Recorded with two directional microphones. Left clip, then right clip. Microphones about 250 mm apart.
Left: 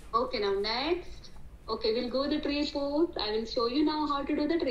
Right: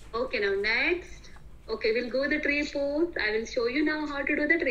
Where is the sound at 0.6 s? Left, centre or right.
Left.